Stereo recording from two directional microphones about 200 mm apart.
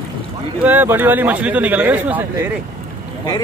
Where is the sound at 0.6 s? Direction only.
10° right (ahead or behind).